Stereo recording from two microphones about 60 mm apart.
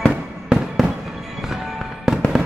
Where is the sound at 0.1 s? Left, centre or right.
Centre.